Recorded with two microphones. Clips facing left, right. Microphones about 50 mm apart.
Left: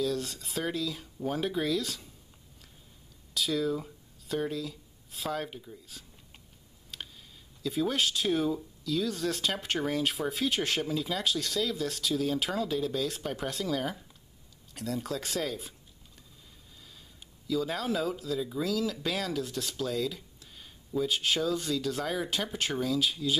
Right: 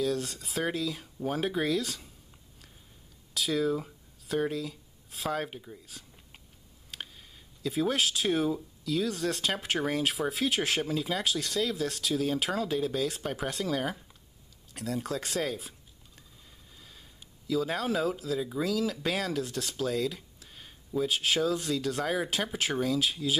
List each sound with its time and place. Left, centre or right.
0.0 s speech: centre
3.3 s speech: centre
5.4 s speech: centre
6.9 s a sound: centre
7.7 s speech: centre
17.5 s speech: centre